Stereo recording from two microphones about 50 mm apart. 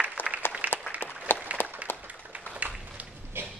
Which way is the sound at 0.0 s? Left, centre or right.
Right.